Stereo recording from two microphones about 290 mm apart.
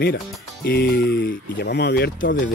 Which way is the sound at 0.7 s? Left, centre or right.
Left.